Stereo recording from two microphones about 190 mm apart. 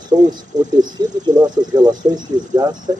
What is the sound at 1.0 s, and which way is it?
A man's voice, 20° right (ahead or behind).